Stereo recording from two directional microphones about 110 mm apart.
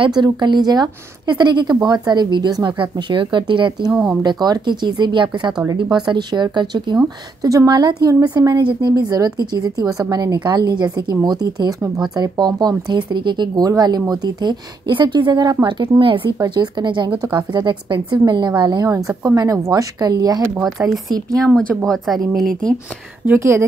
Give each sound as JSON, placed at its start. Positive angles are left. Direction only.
{"t": 0.0, "sound": "speech", "side_deg": -40}
{"t": 16.0, "sound": "speech", "side_deg": -50}
{"t": 16.3, "sound": "speech", "side_deg": -40}
{"t": 18.9, "sound": "speech", "side_deg": -30}
{"t": 20.6, "sound": "a woman's voice", "side_deg": 0}
{"t": 23.2, "sound": "speech", "side_deg": -20}